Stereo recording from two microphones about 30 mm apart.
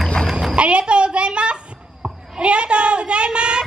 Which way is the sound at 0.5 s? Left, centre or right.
Right.